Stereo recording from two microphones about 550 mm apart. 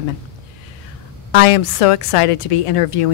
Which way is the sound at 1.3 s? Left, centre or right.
Left.